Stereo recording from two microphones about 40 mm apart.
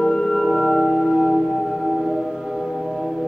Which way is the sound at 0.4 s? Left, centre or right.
Centre.